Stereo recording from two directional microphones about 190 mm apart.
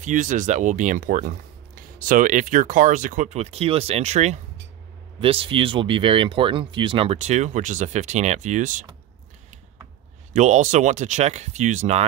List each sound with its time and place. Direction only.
0.0 s speech: 40° right (ahead or behind)
10.3 s speech: 40° right (ahead or behind)